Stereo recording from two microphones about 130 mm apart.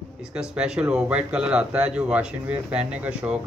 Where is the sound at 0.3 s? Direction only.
5° right (ahead or behind).